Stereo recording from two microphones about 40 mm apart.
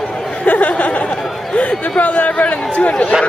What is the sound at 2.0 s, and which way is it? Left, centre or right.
Speech, left.